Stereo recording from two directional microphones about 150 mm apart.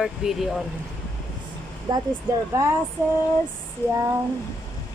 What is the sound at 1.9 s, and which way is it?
Speech, 30° right (ahead or behind).